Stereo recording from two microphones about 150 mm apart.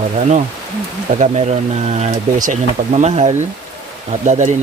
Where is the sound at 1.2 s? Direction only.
45° right (ahead or behind).